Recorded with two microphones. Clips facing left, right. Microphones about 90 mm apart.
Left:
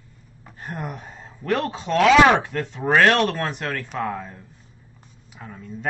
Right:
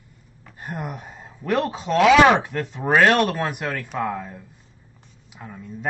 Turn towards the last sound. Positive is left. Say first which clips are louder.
# even
turn(degrees=-5)  # may be behind; listen again after turning